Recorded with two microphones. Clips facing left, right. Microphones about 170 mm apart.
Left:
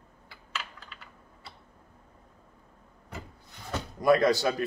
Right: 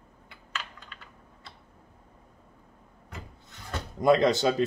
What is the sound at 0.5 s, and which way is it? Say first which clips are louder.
Computer keyboard: even; 5° left (ahead or behind).